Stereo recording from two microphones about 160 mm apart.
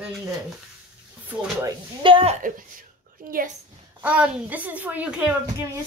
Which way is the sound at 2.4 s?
60° right (ahead or behind).